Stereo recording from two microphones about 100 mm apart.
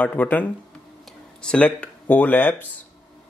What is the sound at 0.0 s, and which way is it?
Speech, 15° left (ahead or behind).